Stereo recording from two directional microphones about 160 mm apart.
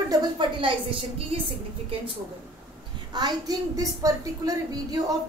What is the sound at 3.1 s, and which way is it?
A woman's voice, 25° right (ahead or behind).